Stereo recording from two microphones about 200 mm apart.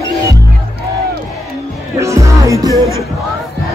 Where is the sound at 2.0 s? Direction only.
15° right (ahead or behind).